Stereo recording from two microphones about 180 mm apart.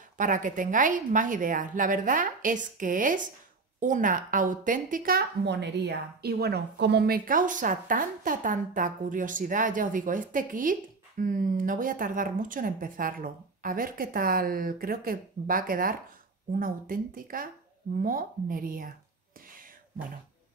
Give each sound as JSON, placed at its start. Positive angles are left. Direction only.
{"t": 0.2, "sound": "a woman's voice", "side_deg": -45}